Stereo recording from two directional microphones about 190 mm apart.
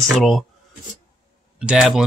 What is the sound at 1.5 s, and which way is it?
Speech, 5° right (ahead or behind).